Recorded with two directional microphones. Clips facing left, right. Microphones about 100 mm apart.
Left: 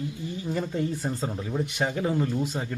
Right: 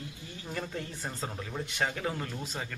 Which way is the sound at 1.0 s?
15° left (ahead or behind).